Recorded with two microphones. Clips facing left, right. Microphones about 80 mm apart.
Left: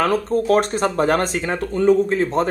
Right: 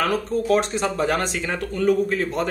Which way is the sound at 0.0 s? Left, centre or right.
Left.